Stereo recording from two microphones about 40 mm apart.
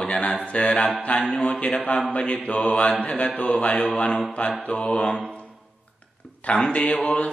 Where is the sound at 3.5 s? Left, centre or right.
Left.